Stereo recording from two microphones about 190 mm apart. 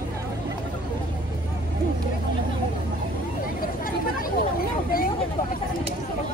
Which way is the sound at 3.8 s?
50° left (ahead or behind).